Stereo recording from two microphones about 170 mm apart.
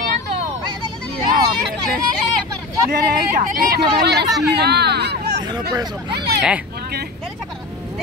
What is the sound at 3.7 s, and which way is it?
Speech, 70° right (ahead or behind).